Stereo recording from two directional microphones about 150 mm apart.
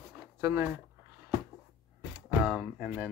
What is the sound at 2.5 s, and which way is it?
Speech, 10° right (ahead or behind).